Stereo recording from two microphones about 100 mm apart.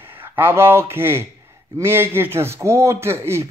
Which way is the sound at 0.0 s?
20° right (ahead or behind).